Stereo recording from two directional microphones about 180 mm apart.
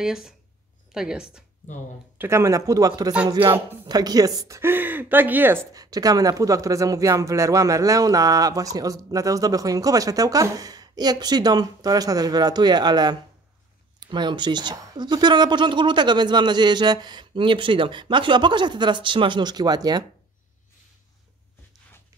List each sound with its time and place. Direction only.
0.0 s speech: 5° right (ahead or behind)
2.1 s speech: 15° right (ahead or behind)
3.3 s speech: 30° right (ahead or behind)